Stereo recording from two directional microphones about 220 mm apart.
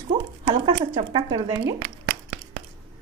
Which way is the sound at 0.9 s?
25° right (ahead or behind).